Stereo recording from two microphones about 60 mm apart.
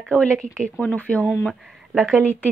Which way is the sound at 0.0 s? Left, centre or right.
Centre.